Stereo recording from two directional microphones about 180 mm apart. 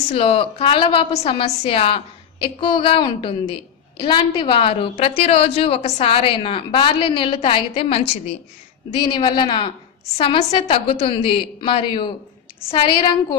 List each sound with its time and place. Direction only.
0.1 s a woman's voice: 30° left (ahead or behind)